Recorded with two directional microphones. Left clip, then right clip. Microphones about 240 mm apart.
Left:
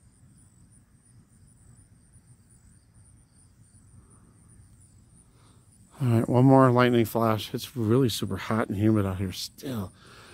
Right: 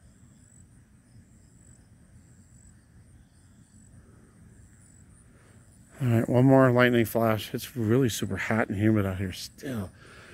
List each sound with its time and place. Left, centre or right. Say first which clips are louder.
5.9 s speech: even; centre